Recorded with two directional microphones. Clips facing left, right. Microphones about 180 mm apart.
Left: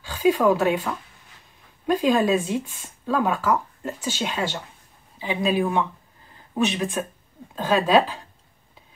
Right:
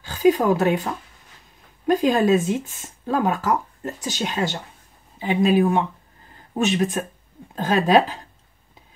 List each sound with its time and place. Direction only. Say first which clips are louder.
0.1 s speech: right 1 dB; 40° right (ahead or behind)
1.9 s speech: right 2 dB; 40° right (ahead or behind)